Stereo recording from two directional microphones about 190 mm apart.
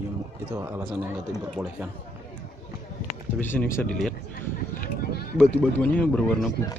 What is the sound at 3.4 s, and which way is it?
Speech, 10° left (ahead or behind).